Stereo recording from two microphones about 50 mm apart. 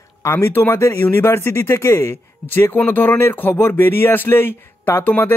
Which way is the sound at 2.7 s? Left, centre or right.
Left.